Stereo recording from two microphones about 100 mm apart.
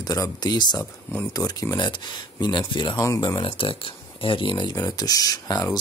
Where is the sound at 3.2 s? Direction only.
55° left (ahead or behind).